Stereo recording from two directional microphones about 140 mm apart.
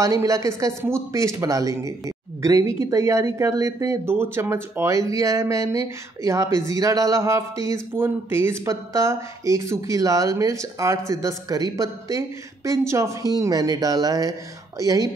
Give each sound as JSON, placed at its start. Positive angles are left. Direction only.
{"t": 0.0, "sound": "speech", "side_deg": -25}